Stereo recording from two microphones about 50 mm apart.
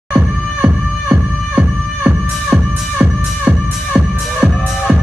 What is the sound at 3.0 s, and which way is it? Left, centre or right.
Music, right.